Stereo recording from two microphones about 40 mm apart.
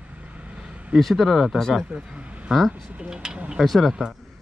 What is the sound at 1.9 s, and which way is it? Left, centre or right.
Speech, right.